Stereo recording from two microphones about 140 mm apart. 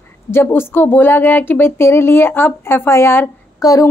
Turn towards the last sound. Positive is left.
turn(degrees=25)  # may be behind; listen again after turning